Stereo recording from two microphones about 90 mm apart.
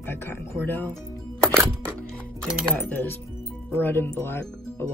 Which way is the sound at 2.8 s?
20° left (ahead or behind).